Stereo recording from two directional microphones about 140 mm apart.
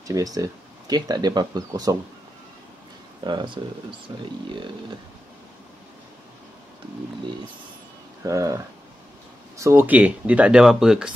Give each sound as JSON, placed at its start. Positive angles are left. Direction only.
{"t": 0.0, "sound": "speech", "side_deg": -25}
{"t": 3.3, "sound": "speech", "side_deg": -35}
{"t": 8.2, "sound": "speech", "side_deg": -20}